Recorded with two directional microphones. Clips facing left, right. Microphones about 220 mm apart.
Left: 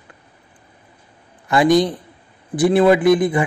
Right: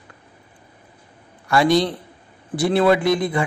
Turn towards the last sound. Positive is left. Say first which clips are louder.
# left 5 dB
turn(degrees=20)  # may be behind; listen again after turning